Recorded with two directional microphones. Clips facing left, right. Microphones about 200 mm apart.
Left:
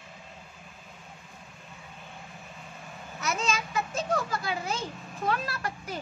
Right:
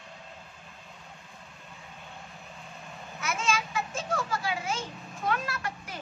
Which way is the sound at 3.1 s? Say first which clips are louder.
Even; 35° left (ahead or behind).